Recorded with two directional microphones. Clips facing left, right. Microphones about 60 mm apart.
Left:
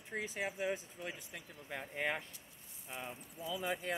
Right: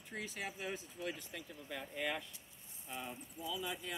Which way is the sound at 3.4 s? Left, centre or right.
Left.